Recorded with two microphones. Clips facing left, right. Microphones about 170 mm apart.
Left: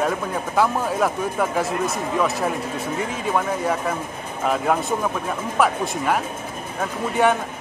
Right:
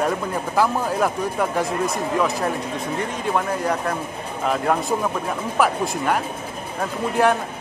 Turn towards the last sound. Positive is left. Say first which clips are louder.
# even
turn(degrees=0)  # may be behind; listen again after turning